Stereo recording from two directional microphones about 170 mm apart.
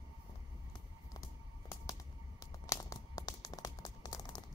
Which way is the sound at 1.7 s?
20° left (ahead or behind).